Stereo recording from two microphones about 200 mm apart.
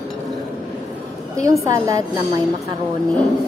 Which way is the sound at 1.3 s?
15° right (ahead or behind).